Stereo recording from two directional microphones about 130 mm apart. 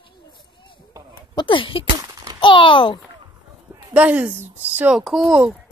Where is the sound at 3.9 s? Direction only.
10° right (ahead or behind).